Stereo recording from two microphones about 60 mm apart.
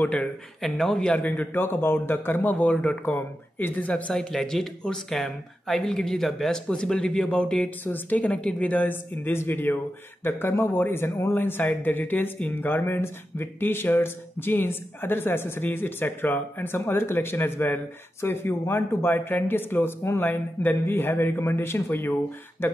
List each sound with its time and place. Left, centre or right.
0.0 s a woman's voice: left
0.6 s speech: centre
1.1 s speech: left
2.5 s a woman's voice: left
3.1 s a woman's voice: left
4.2 s speech: centre
7.8 s a woman's voice: left